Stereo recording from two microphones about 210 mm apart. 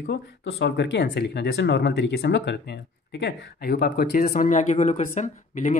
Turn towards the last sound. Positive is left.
turn(degrees=35)  # may be behind; listen again after turning